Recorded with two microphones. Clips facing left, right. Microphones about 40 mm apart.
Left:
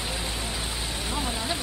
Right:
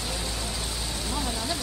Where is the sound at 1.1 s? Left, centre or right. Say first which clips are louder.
Left 1 dB; centre.